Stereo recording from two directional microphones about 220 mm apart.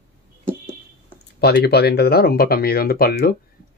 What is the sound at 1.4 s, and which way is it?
Speech, 45° left (ahead or behind).